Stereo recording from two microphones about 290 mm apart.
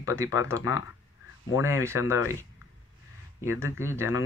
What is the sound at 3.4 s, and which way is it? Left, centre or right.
Speech, centre.